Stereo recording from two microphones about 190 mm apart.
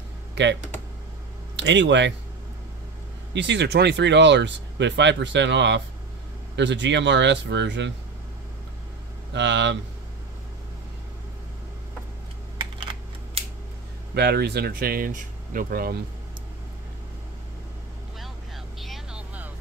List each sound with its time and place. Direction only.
1.6 s speech: 70° right (ahead or behind)
3.3 s speech: 65° right (ahead or behind)
9.3 s speech: 70° right (ahead or behind)
14.1 s speech: 60° right (ahead or behind)
18.8 s vehicle: 5° right (ahead or behind)